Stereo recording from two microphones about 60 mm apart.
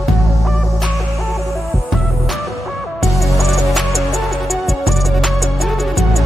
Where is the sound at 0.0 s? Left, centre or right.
Centre.